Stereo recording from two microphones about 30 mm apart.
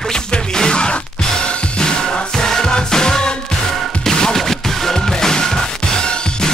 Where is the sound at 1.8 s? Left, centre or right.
Left.